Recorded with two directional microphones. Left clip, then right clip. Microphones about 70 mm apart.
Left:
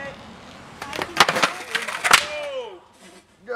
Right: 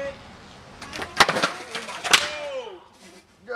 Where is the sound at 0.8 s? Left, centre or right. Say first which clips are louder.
Left 1 dB; left.